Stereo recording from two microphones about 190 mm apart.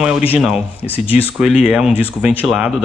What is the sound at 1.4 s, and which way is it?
Speech, 5° right (ahead or behind).